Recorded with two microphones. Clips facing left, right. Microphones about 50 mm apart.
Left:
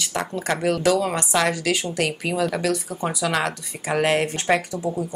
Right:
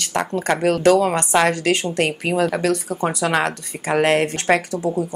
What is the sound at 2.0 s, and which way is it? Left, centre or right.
A woman's voice, right.